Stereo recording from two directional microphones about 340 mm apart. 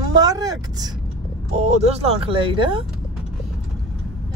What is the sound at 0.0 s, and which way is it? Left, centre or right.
Vehicle, centre.